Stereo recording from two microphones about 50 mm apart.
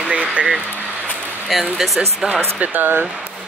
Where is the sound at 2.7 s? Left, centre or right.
Right.